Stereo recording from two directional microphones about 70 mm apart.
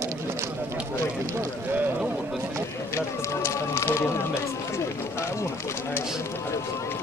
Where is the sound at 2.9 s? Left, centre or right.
Left.